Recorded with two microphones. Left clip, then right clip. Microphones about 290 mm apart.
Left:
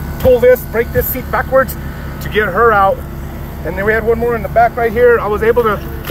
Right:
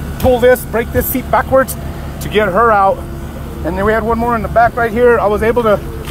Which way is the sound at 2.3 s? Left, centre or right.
Right.